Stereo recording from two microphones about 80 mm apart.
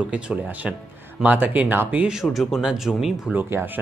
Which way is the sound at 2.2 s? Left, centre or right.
Centre.